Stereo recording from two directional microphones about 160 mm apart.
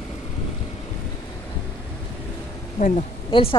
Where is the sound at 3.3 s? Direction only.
35° left (ahead or behind).